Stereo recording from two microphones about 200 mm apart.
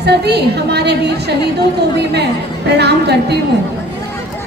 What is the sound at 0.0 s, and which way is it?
A woman's voice, 55° right (ahead or behind).